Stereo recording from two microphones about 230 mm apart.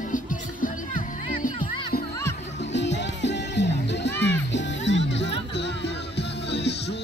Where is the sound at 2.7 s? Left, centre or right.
Left.